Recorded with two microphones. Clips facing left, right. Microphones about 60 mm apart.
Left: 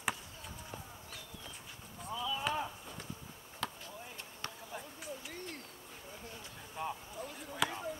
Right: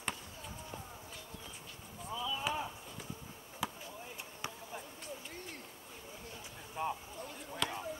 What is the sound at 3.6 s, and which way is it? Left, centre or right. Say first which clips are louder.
Basketball bounce: right 1 dB; centre.